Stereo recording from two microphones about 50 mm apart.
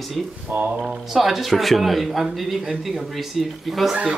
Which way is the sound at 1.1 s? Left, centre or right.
Centre.